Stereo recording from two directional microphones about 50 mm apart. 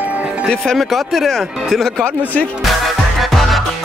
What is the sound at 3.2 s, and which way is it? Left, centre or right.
Music, centre.